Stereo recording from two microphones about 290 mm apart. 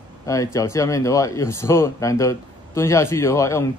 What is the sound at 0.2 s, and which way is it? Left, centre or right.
A man's voice, centre.